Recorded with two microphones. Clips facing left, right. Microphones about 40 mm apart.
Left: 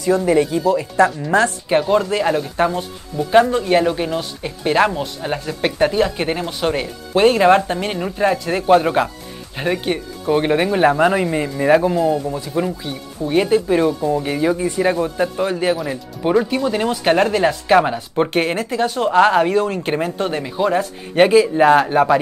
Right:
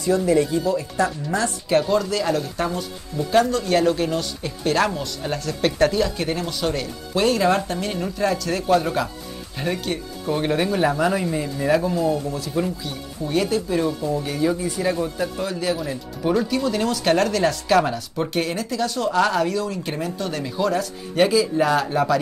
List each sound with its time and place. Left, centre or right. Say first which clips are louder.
0.1 s speech: left 3 dB; left; by 5.9 s centre
5.9 s speech: left 4 dB; left
18.1 s speech: left 8 dB; left